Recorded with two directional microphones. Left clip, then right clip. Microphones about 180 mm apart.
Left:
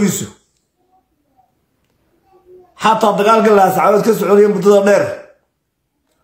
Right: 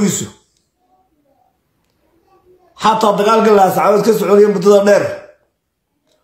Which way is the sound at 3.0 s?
10° left (ahead or behind).